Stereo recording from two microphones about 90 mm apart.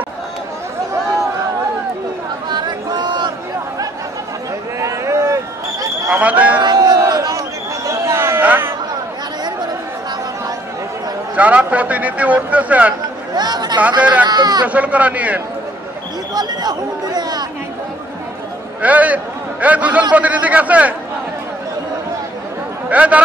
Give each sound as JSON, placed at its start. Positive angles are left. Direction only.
{"t": 2.5, "sound": "chatter", "side_deg": -50}
{"t": 4.7, "sound": "a sound", "side_deg": -35}
{"t": 6.0, "sound": "a sound", "side_deg": -15}
{"t": 6.6, "sound": "a sound", "side_deg": -50}
{"t": 7.1, "sound": "chatter", "side_deg": -40}
{"t": 8.4, "sound": "a sound", "side_deg": -20}
{"t": 11.3, "sound": "a man's voice", "side_deg": -15}
{"t": 13.3, "sound": "chatter", "side_deg": -50}
{"t": 14.2, "sound": "speech", "side_deg": -50}
{"t": 14.7, "sound": "a man's voice", "side_deg": -15}
{"t": 16.3, "sound": "chatter", "side_deg": -50}
{"t": 18.8, "sound": "a man's voice", "side_deg": -15}
{"t": 22.8, "sound": "speech", "side_deg": -15}